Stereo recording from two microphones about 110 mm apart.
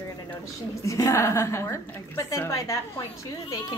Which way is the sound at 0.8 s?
30° left (ahead or behind).